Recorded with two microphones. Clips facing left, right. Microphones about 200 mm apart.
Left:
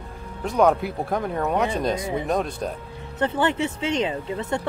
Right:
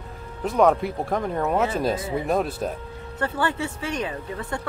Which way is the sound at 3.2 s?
20° left (ahead or behind).